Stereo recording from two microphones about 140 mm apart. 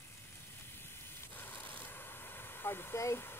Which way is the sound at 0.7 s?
15° left (ahead or behind).